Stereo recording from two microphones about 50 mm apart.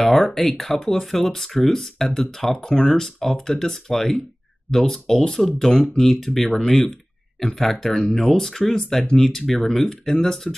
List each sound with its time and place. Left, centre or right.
0.0 s speech: centre